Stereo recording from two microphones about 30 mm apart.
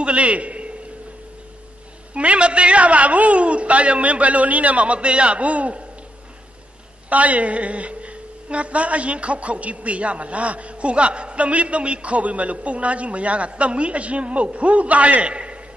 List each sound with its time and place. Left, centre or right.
0.0 s a man's voice: right
2.1 s a woman's voice: right
7.1 s a woman's voice: right
15.2 s a sound: right